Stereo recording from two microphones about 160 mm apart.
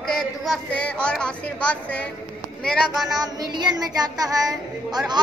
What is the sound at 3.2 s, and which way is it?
Speech, 25° right (ahead or behind).